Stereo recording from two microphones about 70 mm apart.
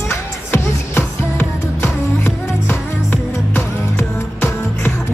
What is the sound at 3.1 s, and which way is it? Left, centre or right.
Music, left.